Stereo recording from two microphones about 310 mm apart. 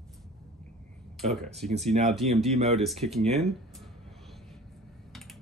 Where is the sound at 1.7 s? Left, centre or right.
Right.